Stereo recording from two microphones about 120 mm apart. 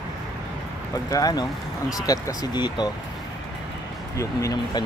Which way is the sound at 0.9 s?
30° left (ahead or behind).